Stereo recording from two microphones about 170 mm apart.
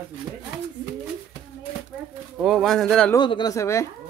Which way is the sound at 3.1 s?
25° left (ahead or behind).